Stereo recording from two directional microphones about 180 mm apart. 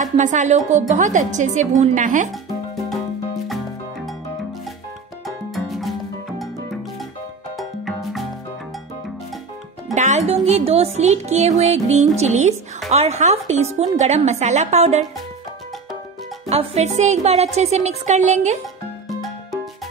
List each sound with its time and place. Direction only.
0.0 s music: 45° right (ahead or behind)
3.4 s music: centre (ahead or behind)
5.2 s music: centre (ahead or behind)
9.9 s music: 40° right (ahead or behind)
16.4 s music: 35° right (ahead or behind)